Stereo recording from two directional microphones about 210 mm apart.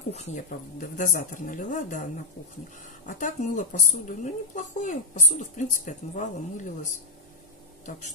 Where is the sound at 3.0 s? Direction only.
40° left (ahead or behind).